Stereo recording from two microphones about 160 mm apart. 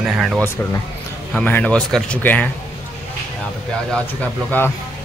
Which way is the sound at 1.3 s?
10° left (ahead or behind).